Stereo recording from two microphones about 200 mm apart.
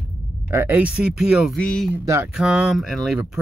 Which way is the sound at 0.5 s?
10° right (ahead or behind).